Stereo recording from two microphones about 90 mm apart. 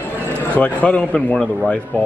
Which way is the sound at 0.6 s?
15° left (ahead or behind).